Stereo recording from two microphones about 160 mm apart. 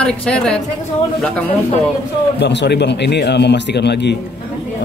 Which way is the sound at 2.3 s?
90° left.